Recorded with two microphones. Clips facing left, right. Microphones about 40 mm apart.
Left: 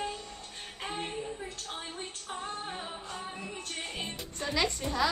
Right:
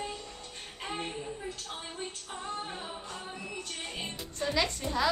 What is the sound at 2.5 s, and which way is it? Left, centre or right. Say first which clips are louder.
Music: even; left.